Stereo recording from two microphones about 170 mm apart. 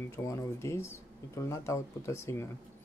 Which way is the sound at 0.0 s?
15° left (ahead or behind).